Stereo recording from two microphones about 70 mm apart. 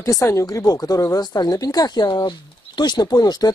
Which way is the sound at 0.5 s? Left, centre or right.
Left.